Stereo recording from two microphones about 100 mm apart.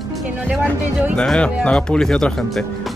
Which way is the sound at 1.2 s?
10° left (ahead or behind).